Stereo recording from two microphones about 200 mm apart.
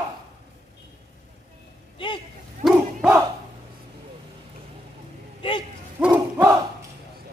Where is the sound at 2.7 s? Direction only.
10° right (ahead or behind).